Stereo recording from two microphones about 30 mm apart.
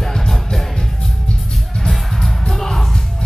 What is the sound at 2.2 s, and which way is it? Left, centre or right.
Music, centre.